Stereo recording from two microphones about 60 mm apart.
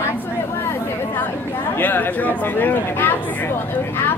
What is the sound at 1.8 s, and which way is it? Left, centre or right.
Speech, left.